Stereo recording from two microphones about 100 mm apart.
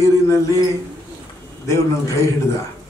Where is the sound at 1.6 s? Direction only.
30° left (ahead or behind).